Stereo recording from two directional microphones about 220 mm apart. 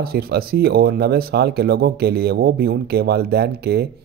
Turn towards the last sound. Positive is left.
turn(degrees=-45)  # may be behind; listen again after turning